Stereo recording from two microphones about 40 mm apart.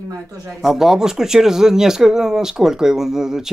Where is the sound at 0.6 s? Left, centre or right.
Centre.